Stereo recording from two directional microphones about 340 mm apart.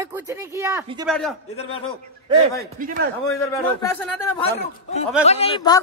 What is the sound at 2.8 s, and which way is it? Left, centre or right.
Speech, right.